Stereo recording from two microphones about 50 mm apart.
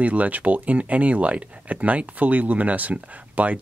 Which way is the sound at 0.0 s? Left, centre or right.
Right.